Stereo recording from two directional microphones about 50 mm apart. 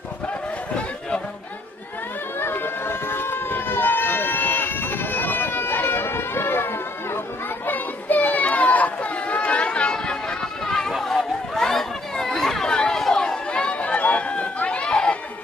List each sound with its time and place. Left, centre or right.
2.3 s a sound: left
7.6 s children playing: left; by 10.3 s centre
10.6 s chatter: centre
13.5 s run: left